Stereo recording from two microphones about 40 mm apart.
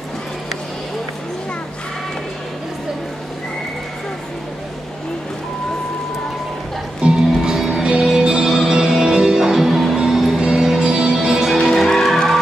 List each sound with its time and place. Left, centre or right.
7.0 s music: right
7.5 s music: centre
8.2 s music: centre
9.9 s music: centre
11.6 s music: centre